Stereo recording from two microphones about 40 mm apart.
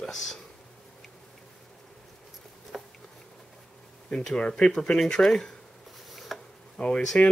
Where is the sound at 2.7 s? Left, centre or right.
Centre.